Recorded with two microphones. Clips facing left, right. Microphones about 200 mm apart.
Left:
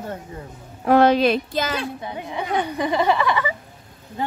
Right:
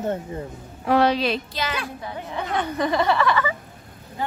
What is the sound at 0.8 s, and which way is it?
Speech, 50° left (ahead or behind).